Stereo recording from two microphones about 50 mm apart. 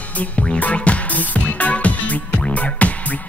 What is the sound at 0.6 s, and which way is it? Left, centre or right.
Music, left.